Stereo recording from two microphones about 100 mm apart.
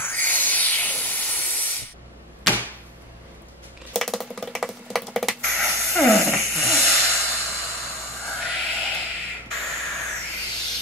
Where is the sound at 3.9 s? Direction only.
Centre (ahead or behind).